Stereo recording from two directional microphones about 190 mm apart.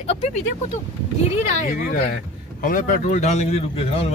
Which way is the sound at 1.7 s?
45° left (ahead or behind).